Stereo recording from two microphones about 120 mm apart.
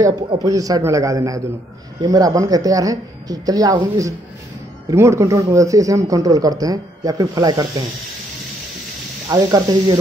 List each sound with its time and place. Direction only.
0.4 s speech: 30° right (ahead or behind)
9.3 s speech: 35° right (ahead or behind)